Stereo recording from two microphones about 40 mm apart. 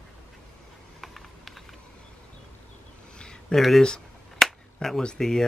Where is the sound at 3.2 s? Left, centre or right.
Left.